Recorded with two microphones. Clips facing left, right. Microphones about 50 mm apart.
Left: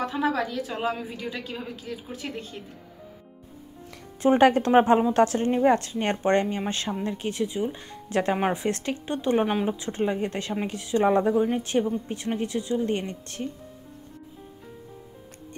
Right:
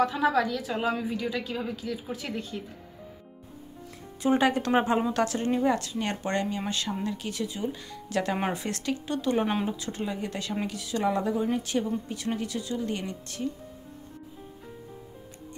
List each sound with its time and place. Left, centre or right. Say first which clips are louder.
0.0 s a woman's voice: right 2 dB; centre
4.2 s speech: left 5 dB; left